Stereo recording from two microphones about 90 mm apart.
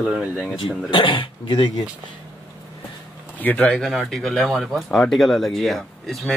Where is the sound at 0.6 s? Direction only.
75° left (ahead or behind).